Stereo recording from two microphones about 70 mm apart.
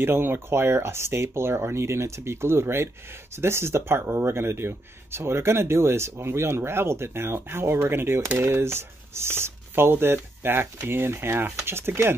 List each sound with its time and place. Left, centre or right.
0.0 s speech: right